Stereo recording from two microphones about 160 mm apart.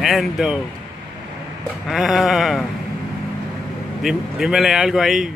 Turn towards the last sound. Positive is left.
turn(degrees=0)  # may be behind; listen again after turning